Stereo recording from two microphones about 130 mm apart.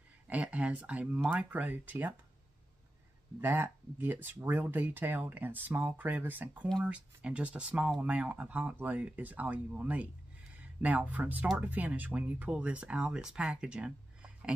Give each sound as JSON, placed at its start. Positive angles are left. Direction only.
{"t": 0.3, "sound": "speech", "side_deg": -10}
{"t": 3.3, "sound": "speech", "side_deg": -15}